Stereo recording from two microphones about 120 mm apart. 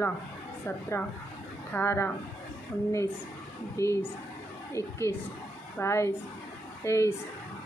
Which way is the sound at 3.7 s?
20° left (ahead or behind).